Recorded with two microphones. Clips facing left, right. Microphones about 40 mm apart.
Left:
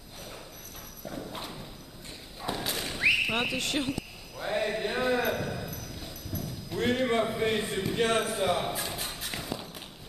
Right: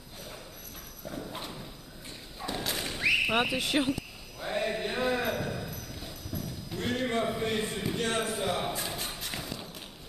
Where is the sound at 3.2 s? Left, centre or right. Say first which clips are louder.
Right 2 dB; centre.